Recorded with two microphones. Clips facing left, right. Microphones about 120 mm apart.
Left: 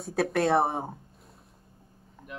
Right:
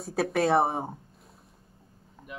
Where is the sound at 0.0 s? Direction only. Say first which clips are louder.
Even; centre (ahead or behind).